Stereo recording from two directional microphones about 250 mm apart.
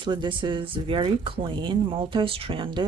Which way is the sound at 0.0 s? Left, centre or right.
Centre.